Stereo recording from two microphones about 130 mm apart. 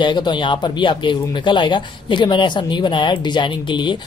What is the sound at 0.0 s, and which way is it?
Speech, 35° left (ahead or behind).